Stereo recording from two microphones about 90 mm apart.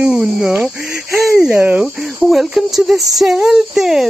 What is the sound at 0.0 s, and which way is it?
Speech, 10° right (ahead or behind).